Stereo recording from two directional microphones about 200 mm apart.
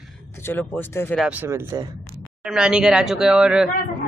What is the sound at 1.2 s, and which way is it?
Speech, 10° right (ahead or behind).